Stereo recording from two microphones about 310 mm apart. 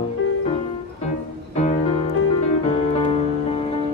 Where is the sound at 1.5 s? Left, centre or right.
Left.